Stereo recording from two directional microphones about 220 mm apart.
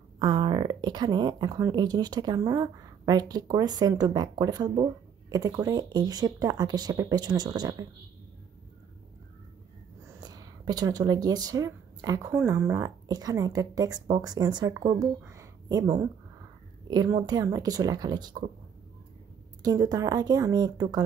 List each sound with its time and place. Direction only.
0.2 s speech: 20° right (ahead or behind)
10.2 s speech: 15° right (ahead or behind)
19.6 s speech: 15° right (ahead or behind)